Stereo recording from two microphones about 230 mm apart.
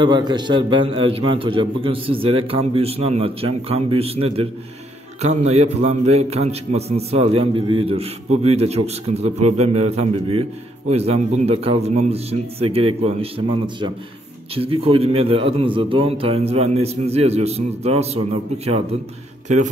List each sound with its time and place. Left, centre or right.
0.0 s a man's voice: centre
14.5 s a man's voice: right
19.4 s speech: right